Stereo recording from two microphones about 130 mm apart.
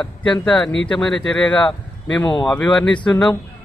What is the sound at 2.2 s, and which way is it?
Speech, 30° left (ahead or behind).